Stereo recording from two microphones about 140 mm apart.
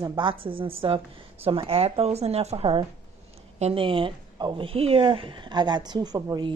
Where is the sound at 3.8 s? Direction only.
35° right (ahead or behind).